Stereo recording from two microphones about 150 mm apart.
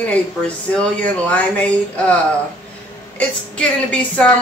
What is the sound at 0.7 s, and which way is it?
A woman's voice, 10° left (ahead or behind).